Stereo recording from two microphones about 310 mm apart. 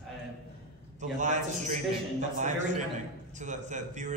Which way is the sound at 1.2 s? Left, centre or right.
Right.